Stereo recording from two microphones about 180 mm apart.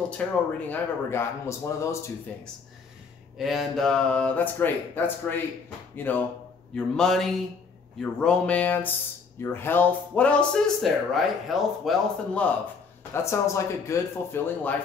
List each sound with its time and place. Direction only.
0.2 s speech: 10° left (ahead or behind)
3.3 s speech: centre (ahead or behind)
13.1 s speech: 15° left (ahead or behind)